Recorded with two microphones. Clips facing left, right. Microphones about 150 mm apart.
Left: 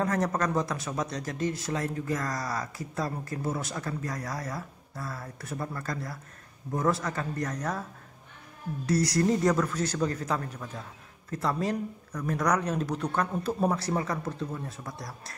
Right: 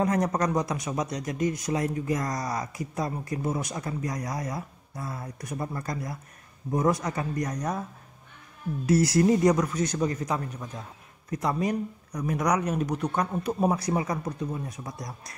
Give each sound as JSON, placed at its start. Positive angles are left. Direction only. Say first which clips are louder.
{"t": 0.0, "sound": "speech", "louder": "right 3 dB", "side_deg": -15}
{"t": 8.8, "sound": "speech", "louder": "right 4 dB", "side_deg": -25}